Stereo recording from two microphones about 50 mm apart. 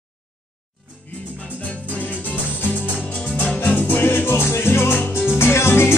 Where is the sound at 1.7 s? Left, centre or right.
Left.